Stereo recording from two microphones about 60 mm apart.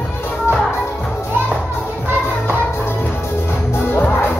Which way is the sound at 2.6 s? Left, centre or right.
Left.